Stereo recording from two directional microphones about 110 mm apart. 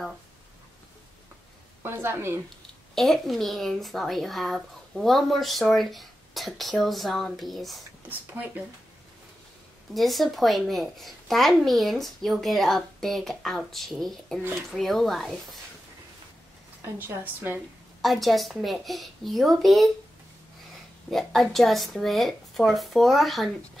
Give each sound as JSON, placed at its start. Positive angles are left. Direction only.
{"t": 1.8, "sound": "a woman's voice", "side_deg": -20}
{"t": 2.9, "sound": "speech", "side_deg": 0}
{"t": 9.9, "sound": "speech", "side_deg": 0}
{"t": 16.8, "sound": "a woman's voice", "side_deg": -20}
{"t": 18.0, "sound": "speech", "side_deg": 0}
{"t": 21.1, "sound": "speech", "side_deg": 0}